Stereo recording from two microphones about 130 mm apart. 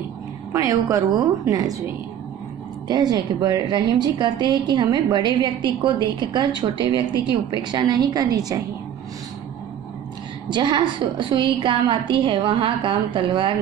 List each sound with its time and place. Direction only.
0.5 s a woman's voice: 25° right (ahead or behind)
2.9 s a woman's voice: 30° right (ahead or behind)
10.5 s a woman's voice: 35° right (ahead or behind)